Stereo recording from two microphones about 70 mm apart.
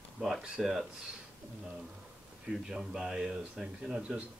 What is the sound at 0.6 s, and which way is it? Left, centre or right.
Speech, centre.